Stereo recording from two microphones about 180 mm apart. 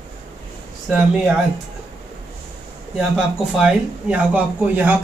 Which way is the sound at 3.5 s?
5° right (ahead or behind).